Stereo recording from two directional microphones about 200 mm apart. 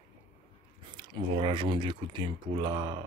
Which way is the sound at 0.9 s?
20° right (ahead or behind).